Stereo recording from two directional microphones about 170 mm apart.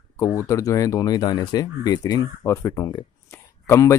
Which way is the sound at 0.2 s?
20° left (ahead or behind).